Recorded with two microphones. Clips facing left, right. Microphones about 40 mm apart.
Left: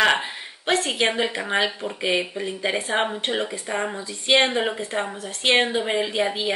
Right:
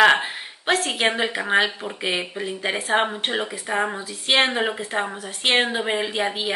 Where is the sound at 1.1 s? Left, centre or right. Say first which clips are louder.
Right 3 dB; centre.